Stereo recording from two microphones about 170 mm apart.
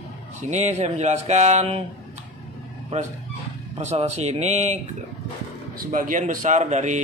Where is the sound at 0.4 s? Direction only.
45° right (ahead or behind).